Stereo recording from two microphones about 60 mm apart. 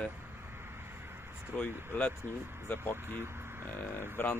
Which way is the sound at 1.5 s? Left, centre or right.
Left.